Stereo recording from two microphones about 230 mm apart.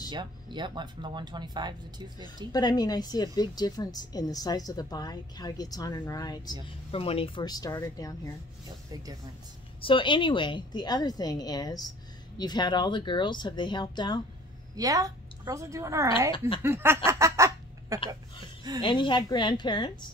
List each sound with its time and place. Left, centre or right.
0.1 s speech: centre
2.5 s a woman's voice: centre
9.8 s a woman's voice: left
14.8 s a woman's voice: centre
16.3 s speech: left
16.6 s a sound: centre
18.8 s speech: left